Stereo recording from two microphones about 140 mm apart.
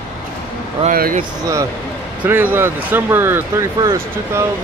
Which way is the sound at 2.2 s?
15° right (ahead or behind).